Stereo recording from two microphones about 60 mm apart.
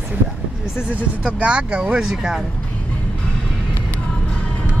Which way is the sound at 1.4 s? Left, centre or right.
Centre.